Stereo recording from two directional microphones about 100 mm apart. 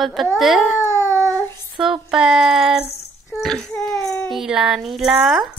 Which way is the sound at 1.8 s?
5° right (ahead or behind).